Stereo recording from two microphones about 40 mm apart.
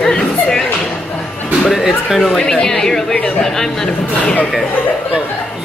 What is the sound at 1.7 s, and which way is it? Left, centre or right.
Speech, centre.